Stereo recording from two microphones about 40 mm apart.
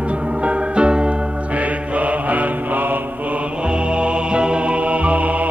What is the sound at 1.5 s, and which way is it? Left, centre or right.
Mantra, right.